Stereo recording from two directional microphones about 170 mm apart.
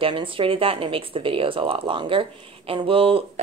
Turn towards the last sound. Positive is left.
turn(degrees=-35)  # may be behind; listen again after turning